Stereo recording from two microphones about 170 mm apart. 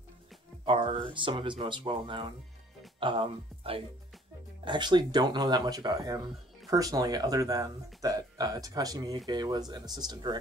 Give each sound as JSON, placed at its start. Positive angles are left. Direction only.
{"t": 0.7, "sound": "speech", "side_deg": -30}